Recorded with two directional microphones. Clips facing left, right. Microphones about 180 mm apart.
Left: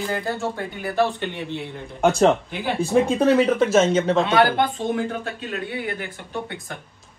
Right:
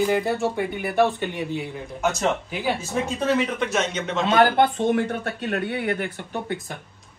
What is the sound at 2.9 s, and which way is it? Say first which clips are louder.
Speech: left 9 dB; 35° left (ahead or behind).